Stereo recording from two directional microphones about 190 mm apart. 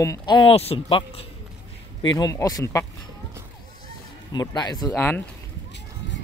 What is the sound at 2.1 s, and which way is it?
Speech, 20° left (ahead or behind).